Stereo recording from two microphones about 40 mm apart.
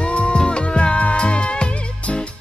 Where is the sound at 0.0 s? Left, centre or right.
Left.